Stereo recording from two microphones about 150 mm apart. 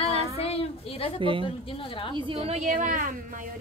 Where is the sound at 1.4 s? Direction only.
35° left (ahead or behind).